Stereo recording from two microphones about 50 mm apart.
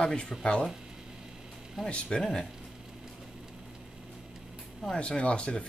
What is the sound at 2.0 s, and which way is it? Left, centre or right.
Speech, centre.